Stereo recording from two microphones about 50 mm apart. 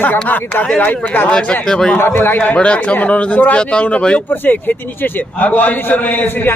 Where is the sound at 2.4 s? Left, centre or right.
Left.